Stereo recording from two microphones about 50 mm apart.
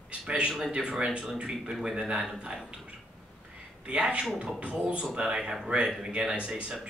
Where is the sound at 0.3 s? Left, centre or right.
Centre.